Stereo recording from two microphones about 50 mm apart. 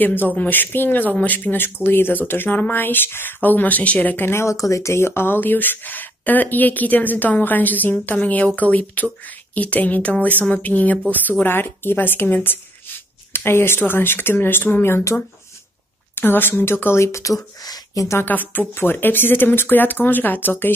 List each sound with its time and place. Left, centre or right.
0.0 s speech: left
4.3 s speech: left
13.3 s speech: left
17.0 s speech: left
18.2 s speech: left